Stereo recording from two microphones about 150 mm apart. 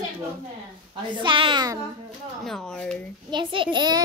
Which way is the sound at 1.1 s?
35° right (ahead or behind).